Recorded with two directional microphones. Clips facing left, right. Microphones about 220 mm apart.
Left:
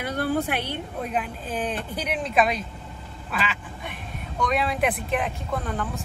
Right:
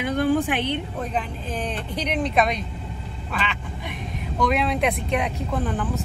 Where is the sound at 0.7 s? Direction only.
10° left (ahead or behind).